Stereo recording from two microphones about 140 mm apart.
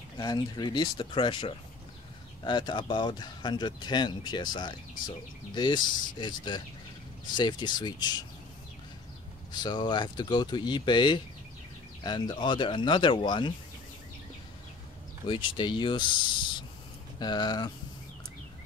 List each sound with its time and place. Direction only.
0.2 s speech: 30° left (ahead or behind)
9.5 s speech: 30° left (ahead or behind)
15.2 s speech: 35° left (ahead or behind)